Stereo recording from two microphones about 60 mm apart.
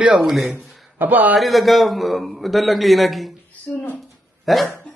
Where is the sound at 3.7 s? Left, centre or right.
Centre.